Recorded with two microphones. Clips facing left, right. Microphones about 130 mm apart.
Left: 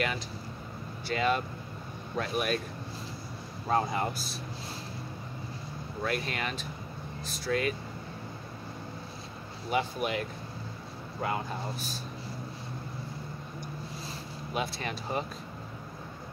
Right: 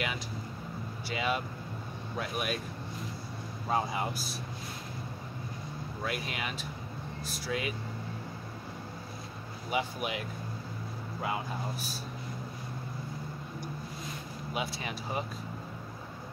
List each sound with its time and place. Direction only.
1.0 s speech: 10° right (ahead or behind)
3.6 s speech: 10° right (ahead or behind)
6.0 s speech: 10° right (ahead or behind)
9.7 s speech: 10° right (ahead or behind)
14.5 s speech: 10° right (ahead or behind)